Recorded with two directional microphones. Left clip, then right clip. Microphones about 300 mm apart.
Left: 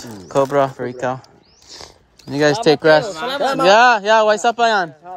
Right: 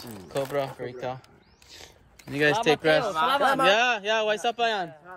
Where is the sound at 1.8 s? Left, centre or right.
Left.